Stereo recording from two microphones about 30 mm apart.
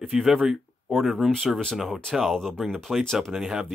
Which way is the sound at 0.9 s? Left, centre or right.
Centre.